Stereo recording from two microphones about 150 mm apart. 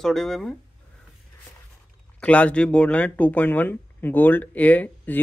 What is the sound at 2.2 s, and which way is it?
Speech, 10° left (ahead or behind).